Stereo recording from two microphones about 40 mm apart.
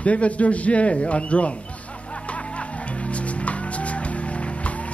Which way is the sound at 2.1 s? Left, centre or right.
Left.